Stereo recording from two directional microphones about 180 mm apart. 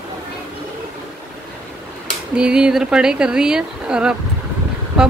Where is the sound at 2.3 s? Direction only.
5° right (ahead or behind).